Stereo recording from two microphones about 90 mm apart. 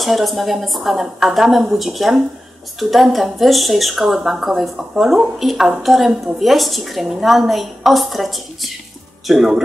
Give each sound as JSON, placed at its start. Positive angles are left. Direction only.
{"t": 0.0, "sound": "a woman's voice", "side_deg": 0}